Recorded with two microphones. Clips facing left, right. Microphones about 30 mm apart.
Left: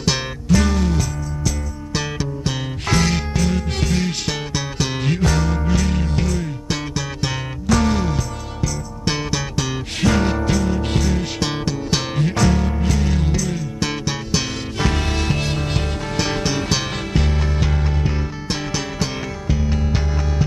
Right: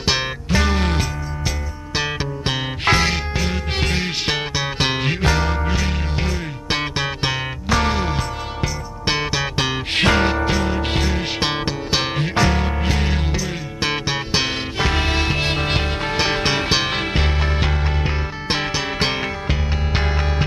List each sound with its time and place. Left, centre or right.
0.0 s music: right
3.0 s music: right
18.9 s music: right